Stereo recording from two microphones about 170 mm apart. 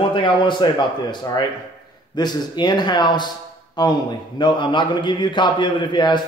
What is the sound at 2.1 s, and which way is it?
A man's voice, 25° left (ahead or behind).